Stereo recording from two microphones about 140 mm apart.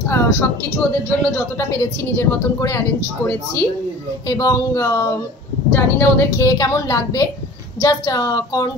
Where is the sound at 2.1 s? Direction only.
20° left (ahead or behind).